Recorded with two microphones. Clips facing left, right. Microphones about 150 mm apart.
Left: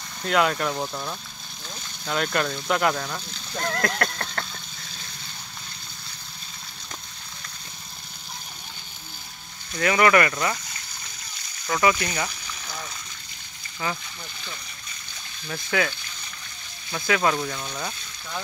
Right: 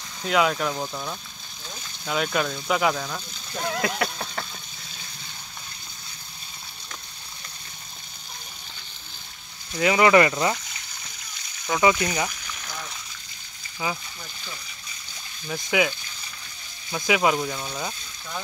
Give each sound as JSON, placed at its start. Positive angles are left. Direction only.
{"t": 0.2, "sound": "speech", "side_deg": 0}
{"t": 9.7, "sound": "speech", "side_deg": -15}
{"t": 11.6, "sound": "speech", "side_deg": -10}
{"t": 13.8, "sound": "speech", "side_deg": -10}
{"t": 15.4, "sound": "speech", "side_deg": -10}
{"t": 16.9, "sound": "speech", "side_deg": -15}